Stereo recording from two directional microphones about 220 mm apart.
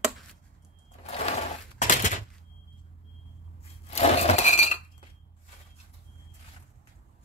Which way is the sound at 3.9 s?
30° left (ahead or behind).